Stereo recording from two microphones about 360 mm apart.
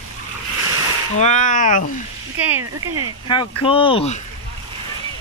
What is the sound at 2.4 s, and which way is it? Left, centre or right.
Speech, centre.